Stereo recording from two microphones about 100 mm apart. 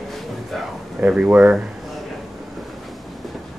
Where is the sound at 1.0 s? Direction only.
15° right (ahead or behind).